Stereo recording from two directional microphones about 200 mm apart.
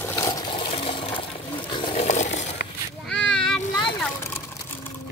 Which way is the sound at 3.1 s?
5° left (ahead or behind).